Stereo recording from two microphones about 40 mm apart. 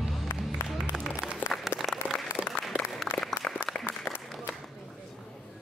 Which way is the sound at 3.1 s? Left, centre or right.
Centre.